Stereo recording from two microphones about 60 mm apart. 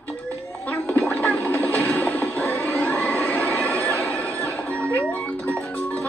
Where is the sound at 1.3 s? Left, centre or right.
Left.